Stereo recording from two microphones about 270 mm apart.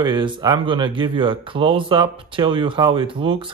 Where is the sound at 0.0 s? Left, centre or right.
Centre.